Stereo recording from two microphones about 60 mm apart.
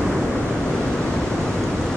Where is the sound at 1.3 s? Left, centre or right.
Centre.